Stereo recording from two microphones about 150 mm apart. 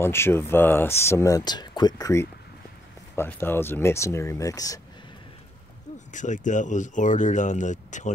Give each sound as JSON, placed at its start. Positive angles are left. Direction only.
{"t": 0.0, "sound": "speech", "side_deg": 15}
{"t": 6.1, "sound": "speech", "side_deg": 55}